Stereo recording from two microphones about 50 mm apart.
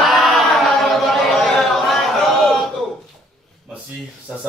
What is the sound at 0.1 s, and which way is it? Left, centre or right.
Chant, centre.